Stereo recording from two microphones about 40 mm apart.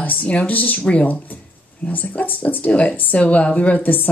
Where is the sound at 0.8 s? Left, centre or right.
Left.